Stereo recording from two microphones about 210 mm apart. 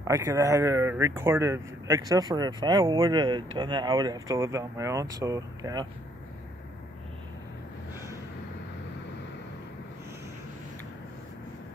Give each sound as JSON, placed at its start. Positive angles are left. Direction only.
{"t": 0.0, "sound": "speech", "side_deg": -15}